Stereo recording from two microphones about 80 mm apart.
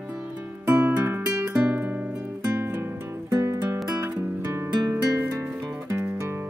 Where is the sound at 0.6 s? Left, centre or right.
Centre; by 3.8 s right.